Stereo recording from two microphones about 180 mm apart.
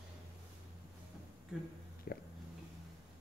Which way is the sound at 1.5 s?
5° right (ahead or behind).